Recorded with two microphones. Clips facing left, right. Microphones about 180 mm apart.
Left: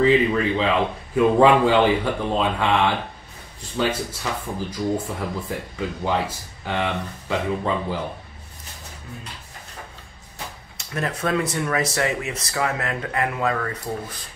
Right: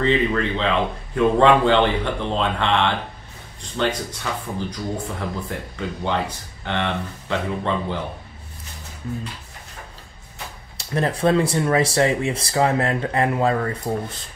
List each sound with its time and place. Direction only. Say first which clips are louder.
0.0 s speech: left 2 dB; 5° left (ahead or behind)
10.8 s speech: right 5 dB; 30° right (ahead or behind)